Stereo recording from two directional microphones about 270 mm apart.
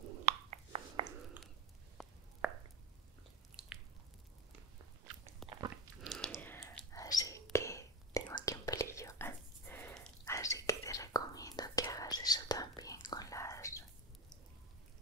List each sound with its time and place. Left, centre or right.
0.2 s a sound: right
2.0 s chopping: centre
3.5 s biting: centre
5.4 s biting: centre
6.0 s whispering: centre